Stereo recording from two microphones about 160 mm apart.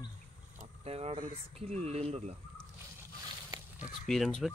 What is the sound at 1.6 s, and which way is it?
Speech, 40° right (ahead or behind).